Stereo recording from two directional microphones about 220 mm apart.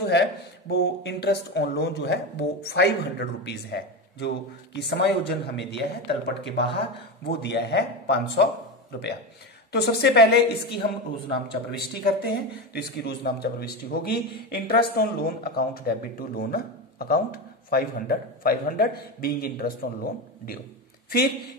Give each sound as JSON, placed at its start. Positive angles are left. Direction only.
{"t": 0.0, "sound": "speech", "side_deg": 50}
{"t": 9.7, "sound": "speech", "side_deg": 45}